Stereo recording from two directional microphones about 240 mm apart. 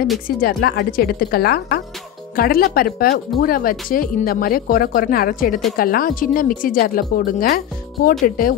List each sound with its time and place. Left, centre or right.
0.4 s speech: left